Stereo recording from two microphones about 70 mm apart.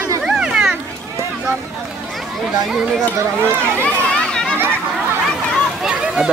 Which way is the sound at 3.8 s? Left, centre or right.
Centre.